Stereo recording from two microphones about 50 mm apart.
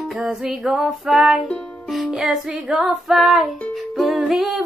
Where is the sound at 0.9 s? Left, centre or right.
Centre.